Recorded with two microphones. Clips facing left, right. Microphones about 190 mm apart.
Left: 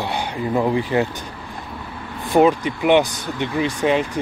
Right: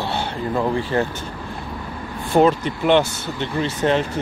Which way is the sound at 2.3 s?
15° left (ahead or behind).